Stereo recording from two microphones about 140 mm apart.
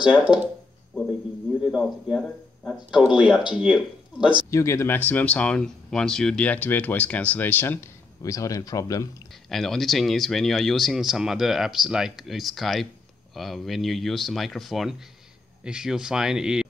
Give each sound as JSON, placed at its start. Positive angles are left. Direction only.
{"t": 0.0, "sound": "speech", "side_deg": -10}
{"t": 1.6, "sound": "speech", "side_deg": 0}
{"t": 2.9, "sound": "speech", "side_deg": -5}
{"t": 4.5, "sound": "speech", "side_deg": 20}
{"t": 9.5, "sound": "speech", "side_deg": 0}